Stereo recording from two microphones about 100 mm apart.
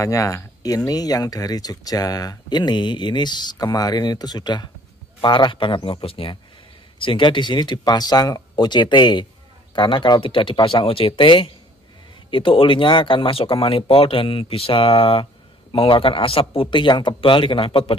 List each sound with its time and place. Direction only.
0.0 s speech: 35° left (ahead or behind); by 17.9 s 60° left (ahead or behind)